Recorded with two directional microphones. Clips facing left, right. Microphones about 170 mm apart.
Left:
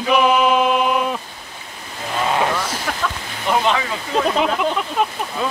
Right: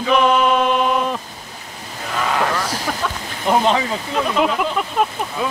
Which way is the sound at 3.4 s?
35° right (ahead or behind).